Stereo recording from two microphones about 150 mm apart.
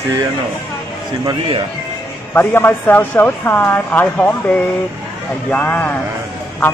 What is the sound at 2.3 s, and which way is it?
Speech, 15° left (ahead or behind).